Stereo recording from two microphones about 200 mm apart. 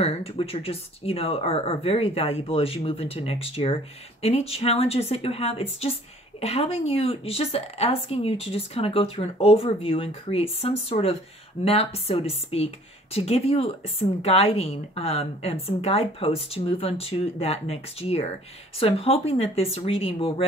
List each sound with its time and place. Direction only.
0.0 s speech: 30° left (ahead or behind)